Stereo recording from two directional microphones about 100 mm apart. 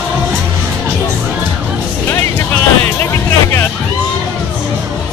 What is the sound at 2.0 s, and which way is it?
Music, 20° left (ahead or behind).